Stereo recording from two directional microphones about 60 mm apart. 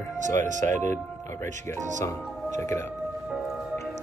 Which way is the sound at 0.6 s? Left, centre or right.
Left.